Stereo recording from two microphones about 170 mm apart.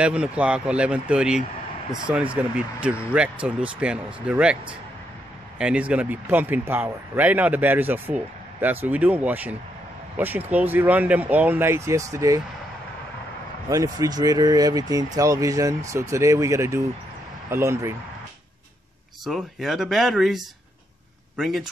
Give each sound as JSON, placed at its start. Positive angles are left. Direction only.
{"t": 0.0, "sound": "speech", "side_deg": -5}
{"t": 5.6, "sound": "speech", "side_deg": -5}
{"t": 13.7, "sound": "speech", "side_deg": -20}
{"t": 19.2, "sound": "speech", "side_deg": 0}